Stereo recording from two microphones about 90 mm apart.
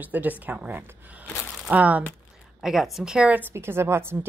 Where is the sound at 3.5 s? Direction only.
30° right (ahead or behind).